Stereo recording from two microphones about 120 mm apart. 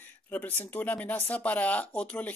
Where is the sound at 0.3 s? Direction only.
15° left (ahead or behind).